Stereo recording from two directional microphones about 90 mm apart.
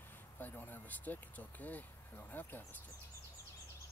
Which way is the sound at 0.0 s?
20° left (ahead or behind).